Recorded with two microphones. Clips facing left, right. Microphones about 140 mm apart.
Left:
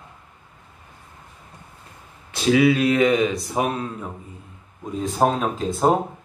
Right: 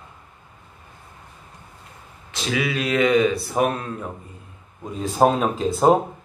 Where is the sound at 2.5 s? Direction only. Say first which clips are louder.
Left 6 dB; 30° left (ahead or behind).